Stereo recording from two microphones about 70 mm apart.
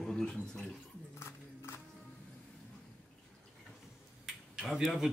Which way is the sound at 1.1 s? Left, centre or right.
Left.